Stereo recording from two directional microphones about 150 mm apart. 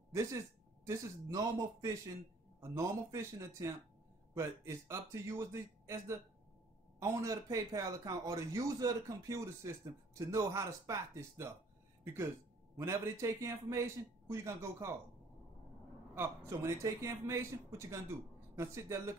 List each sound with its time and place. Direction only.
0.1 s speech: 20° right (ahead or behind)
16.2 s speech: 20° right (ahead or behind)